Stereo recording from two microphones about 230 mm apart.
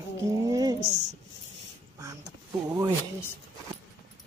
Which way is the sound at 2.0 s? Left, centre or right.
Centre.